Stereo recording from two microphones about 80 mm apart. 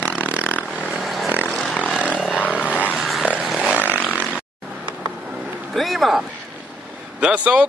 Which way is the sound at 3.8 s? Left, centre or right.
Left.